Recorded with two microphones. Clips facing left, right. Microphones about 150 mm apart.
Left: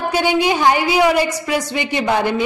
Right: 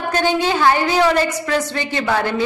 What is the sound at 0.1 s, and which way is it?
A woman's voice, 10° left (ahead or behind).